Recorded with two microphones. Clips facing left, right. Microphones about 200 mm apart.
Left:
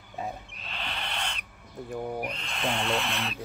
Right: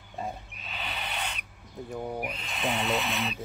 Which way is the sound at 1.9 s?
5° right (ahead or behind).